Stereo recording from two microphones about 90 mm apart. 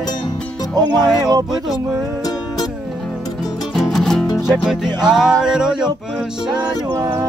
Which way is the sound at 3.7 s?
5° left (ahead or behind).